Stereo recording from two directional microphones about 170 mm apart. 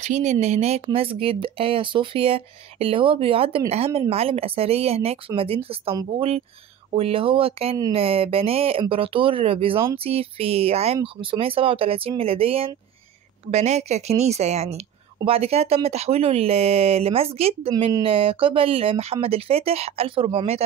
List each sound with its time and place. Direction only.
0.0 s speech: 45° right (ahead or behind)